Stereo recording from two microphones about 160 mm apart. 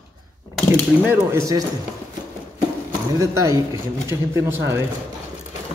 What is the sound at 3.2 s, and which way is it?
Speech, 20° right (ahead or behind).